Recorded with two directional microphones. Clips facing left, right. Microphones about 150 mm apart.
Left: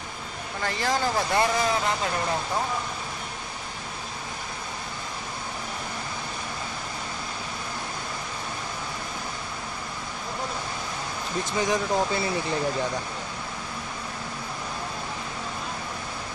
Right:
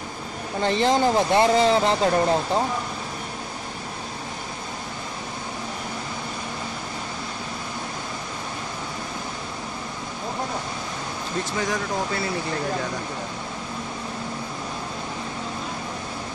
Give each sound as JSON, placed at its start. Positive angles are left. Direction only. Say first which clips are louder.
{"t": 0.6, "sound": "speech", "louder": "right 7 dB", "side_deg": -20}
{"t": 11.5, "sound": "speech", "louder": "left 3 dB", "side_deg": 20}